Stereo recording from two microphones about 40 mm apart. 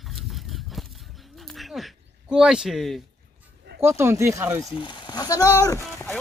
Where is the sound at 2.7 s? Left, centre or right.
Centre.